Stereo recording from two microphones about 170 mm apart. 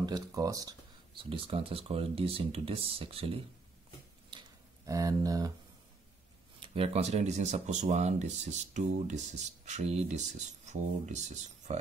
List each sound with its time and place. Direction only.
0.0 s speech: 20° right (ahead or behind)
4.3 s a sound: 25° right (ahead or behind)
6.6 s speech: 35° right (ahead or behind)